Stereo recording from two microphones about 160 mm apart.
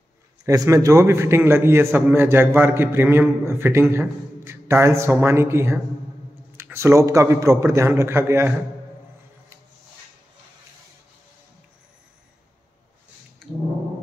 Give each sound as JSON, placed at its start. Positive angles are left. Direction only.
{"t": 0.5, "sound": "a man's voice", "side_deg": -20}